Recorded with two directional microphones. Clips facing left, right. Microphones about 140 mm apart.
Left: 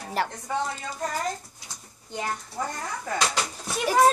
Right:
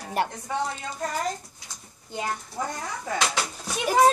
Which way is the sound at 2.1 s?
15° right (ahead or behind).